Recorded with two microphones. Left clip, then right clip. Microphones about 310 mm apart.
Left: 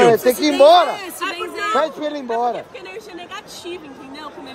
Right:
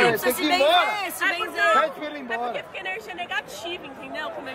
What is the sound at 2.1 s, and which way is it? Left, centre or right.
Speech, left.